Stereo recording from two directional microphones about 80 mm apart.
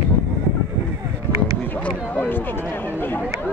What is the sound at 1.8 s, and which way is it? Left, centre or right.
Speech, centre.